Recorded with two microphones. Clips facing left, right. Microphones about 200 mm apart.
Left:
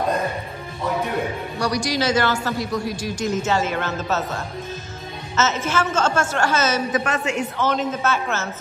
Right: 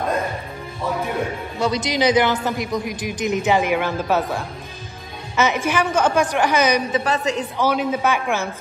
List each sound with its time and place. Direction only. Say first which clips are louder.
1.6 s a man's voice: right 3 dB; 20° right (ahead or behind)
6.9 s a woman's voice: right 2 dB; 35° right (ahead or behind)
7.5 s a man's voice: right 2 dB; 10° right (ahead or behind)